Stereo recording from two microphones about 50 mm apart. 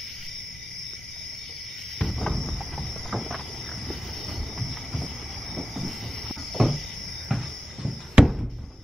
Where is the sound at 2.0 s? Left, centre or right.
Centre.